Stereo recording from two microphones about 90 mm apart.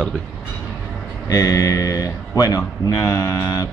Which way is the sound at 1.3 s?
40° left (ahead or behind).